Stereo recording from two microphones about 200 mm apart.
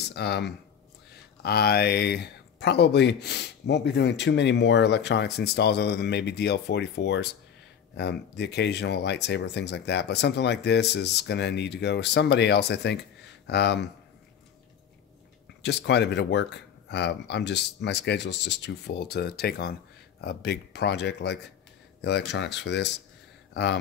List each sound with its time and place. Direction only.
0.1 s speech: 55° left (ahead or behind)
15.6 s speech: 60° left (ahead or behind)